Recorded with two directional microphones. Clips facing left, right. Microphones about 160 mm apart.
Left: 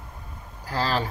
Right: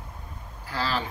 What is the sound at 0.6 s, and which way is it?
Speech, 40° left (ahead or behind).